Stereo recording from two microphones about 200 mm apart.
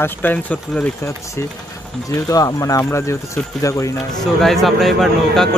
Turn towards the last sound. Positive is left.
turn(degrees=0)  # may be behind; listen again after turning